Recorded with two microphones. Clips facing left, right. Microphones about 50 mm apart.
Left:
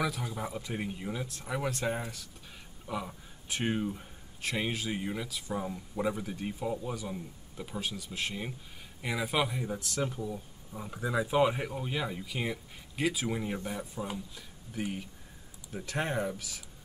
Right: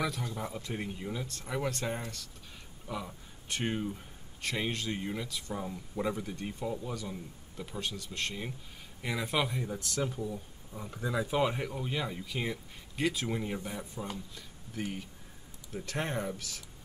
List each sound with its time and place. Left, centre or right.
0.0 s speech: centre